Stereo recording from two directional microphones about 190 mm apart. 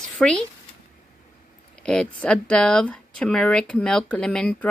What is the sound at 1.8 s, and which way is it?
Speech, 5° left (ahead or behind).